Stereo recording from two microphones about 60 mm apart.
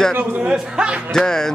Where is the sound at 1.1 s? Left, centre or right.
Centre.